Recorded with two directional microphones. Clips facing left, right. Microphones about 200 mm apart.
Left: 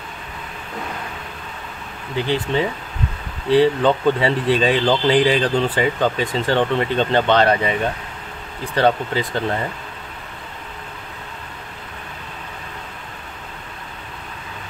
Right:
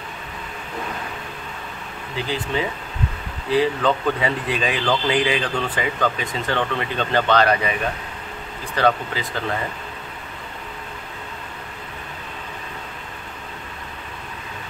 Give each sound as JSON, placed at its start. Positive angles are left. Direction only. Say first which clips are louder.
{"t": 2.2, "sound": "speech", "louder": "left 4 dB", "side_deg": 25}
{"t": 8.7, "sound": "speech", "louder": "left 3 dB", "side_deg": 30}